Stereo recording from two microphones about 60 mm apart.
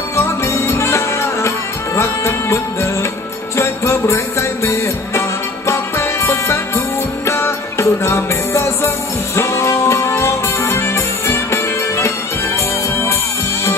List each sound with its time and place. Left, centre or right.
0.1 s music: left